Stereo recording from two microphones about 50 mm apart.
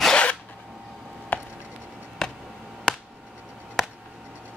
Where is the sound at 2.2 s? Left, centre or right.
Centre.